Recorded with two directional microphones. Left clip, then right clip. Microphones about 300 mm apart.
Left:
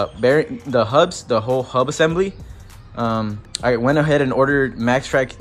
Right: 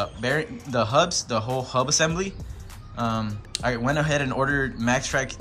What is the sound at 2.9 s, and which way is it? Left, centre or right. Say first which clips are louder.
Speech: left 6 dB; centre.